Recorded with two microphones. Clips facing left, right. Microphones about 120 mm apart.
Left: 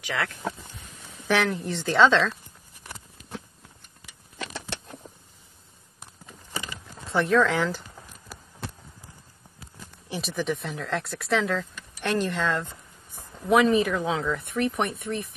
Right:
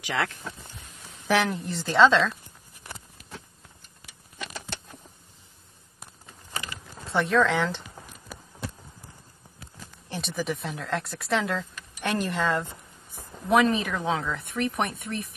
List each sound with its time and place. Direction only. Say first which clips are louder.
0.0 s speech: right 1 dB; 25° right (ahead or behind)
1.2 s speech: even; 5° right (ahead or behind)
7.1 s speech: left 1 dB; centre (ahead or behind)
10.2 s speech: left 1 dB; centre (ahead or behind)
13.5 s speech: left 2 dB; centre (ahead or behind)